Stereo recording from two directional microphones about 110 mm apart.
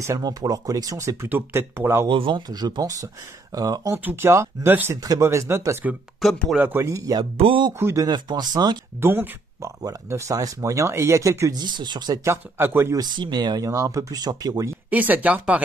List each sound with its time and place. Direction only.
0.0 s speech: 30° right (ahead or behind)
1.3 s speech: 20° right (ahead or behind)
2.0 s speech: 50° right (ahead or behind)
2.5 s speech: 40° right (ahead or behind)
3.9 s speech: 20° right (ahead or behind)
5.0 s speech: 30° right (ahead or behind)
7.3 s speech: 60° right (ahead or behind)
7.8 s speech: 30° right (ahead or behind)
9.0 s speech: 20° right (ahead or behind)
11.6 s speech: 40° right (ahead or behind)
12.3 s speech: 20° right (ahead or behind)
12.9 s speech: 40° right (ahead or behind)
14.9 s speech: 15° right (ahead or behind)